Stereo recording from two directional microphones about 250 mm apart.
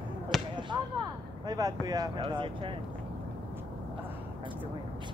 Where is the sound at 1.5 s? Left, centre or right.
Centre.